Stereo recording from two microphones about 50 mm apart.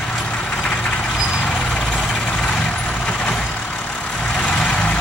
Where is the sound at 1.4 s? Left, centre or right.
Centre.